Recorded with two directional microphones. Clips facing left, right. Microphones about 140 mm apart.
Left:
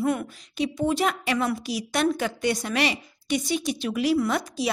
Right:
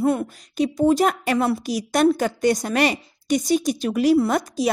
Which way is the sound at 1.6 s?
45° right (ahead or behind).